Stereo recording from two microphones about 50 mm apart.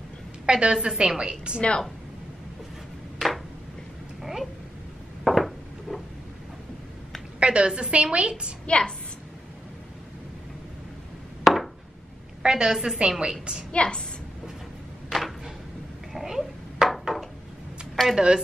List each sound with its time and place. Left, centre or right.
0.5 s a woman's voice: centre
1.6 s a woman's voice: left
4.2 s a sound: centre
7.3 s a woman's voice: right
8.6 s a woman's voice: left
11.4 s a sound: centre
12.4 s a woman's voice: centre
13.7 s a woman's voice: left
15.0 s a sound: centre
18.0 s speech: centre